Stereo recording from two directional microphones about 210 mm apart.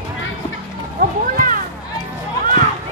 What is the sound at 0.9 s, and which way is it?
Music, 40° right (ahead or behind).